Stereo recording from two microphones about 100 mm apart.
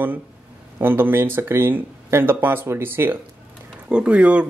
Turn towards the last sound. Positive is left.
turn(degrees=-10)  # may be behind; listen again after turning